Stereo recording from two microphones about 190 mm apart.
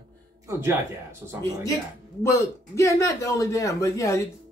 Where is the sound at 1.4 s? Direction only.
15° left (ahead or behind).